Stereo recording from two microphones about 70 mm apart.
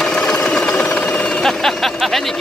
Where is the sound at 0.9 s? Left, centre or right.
Centre.